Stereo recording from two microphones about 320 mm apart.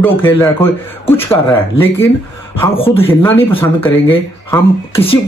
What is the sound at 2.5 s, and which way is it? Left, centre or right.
Speech, centre.